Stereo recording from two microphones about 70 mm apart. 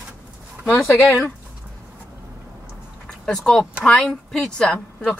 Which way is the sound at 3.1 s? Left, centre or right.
Centre.